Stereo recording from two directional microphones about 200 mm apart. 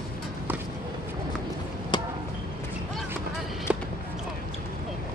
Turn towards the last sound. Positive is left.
turn(degrees=-5)  # may be behind; listen again after turning